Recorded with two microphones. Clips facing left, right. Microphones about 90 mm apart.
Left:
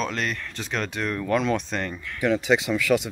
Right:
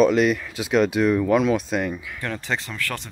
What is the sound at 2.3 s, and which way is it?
Speech, 5° left (ahead or behind).